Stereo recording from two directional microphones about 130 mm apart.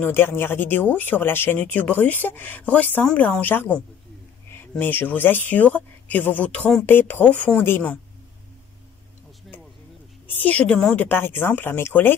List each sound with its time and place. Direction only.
0.0 s speech: 15° left (ahead or behind)
10.2 s speech: 15° left (ahead or behind)